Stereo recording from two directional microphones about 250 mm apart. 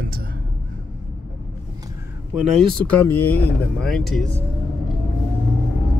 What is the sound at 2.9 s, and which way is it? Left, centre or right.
Speech, centre.